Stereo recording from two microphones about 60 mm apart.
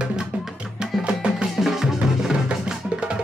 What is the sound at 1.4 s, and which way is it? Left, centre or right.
Music, centre.